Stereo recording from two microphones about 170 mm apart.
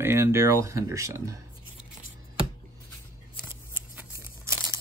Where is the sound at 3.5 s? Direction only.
15° right (ahead or behind).